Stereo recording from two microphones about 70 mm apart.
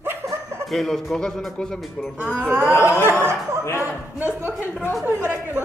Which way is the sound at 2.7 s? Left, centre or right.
Left.